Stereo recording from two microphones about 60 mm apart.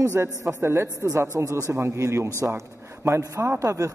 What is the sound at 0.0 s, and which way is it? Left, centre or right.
Speech, right.